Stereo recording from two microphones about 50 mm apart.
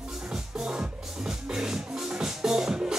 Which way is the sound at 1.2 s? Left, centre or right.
Centre.